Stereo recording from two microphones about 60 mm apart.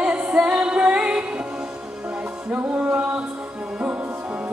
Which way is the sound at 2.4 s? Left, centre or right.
Right.